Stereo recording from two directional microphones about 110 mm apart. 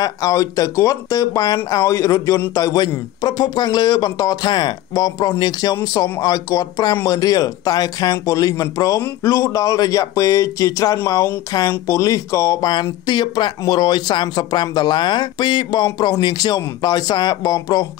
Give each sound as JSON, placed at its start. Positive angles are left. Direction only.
{"t": 0.0, "sound": "speech", "side_deg": 30}